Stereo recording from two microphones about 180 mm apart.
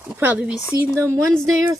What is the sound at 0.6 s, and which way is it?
Owl, 15° left (ahead or behind).